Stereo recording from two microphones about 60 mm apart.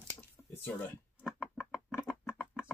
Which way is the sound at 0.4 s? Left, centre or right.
Left.